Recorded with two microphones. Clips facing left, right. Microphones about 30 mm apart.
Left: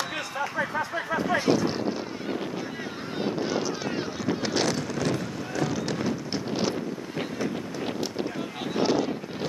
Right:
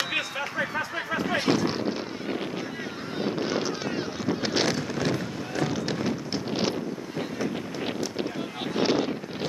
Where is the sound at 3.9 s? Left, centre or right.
Centre.